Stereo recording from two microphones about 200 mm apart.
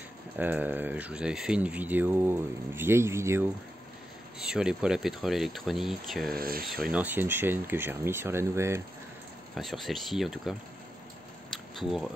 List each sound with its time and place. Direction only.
0.4 s speech: 10° right (ahead or behind)
6.3 s speech: 45° right (ahead or behind)
6.8 s speech: 5° right (ahead or behind)
9.6 s speech: centre (ahead or behind)
11.5 s camera: centre (ahead or behind)